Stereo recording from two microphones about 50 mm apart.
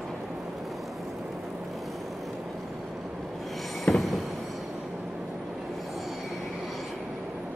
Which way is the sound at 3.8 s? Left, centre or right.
Centre.